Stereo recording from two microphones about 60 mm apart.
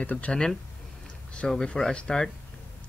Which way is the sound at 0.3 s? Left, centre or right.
Centre.